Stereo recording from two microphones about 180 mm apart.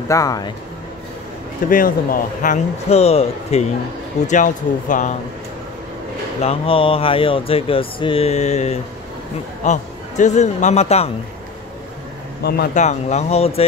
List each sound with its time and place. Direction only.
0.1 s speech: 20° left (ahead or behind)
1.7 s speech: 50° left (ahead or behind); by 3.6 s 35° left (ahead or behind)
4.3 s speech: 45° left (ahead or behind)
6.4 s a man's voice: 30° left (ahead or behind)
12.4 s speech: 65° left (ahead or behind)
12.7 s speech: 40° left (ahead or behind)